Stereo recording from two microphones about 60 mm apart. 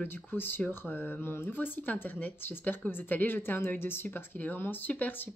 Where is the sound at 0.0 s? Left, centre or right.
Left.